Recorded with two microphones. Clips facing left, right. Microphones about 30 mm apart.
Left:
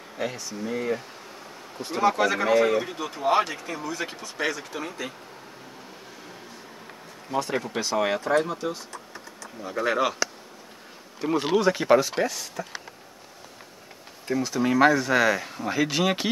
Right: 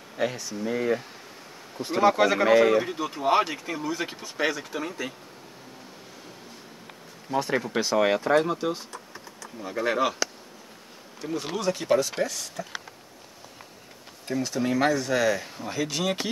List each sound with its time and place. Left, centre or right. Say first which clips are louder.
0.2 s speech: right 2 dB; centre
7.2 s speech: right 1 dB; centre
9.6 s speech: left 1 dB; centre
11.2 s speech: left 6 dB; left
11.5 s speech: left 4 dB; left
14.3 s speech: left 2 dB; centre